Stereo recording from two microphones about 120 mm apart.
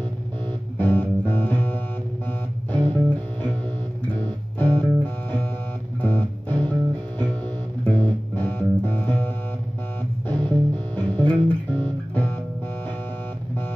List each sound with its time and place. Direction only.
0.7 s music: 15° left (ahead or behind)
4.1 s music: 15° left (ahead or behind)